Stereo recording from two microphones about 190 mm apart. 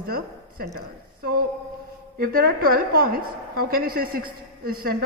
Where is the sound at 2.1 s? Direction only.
50° right (ahead or behind).